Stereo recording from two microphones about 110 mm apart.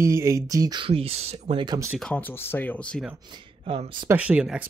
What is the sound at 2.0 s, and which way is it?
Speech, 15° left (ahead or behind).